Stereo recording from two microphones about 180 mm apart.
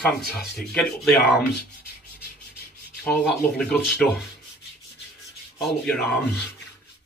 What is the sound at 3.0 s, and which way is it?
Speech, 5° left (ahead or behind).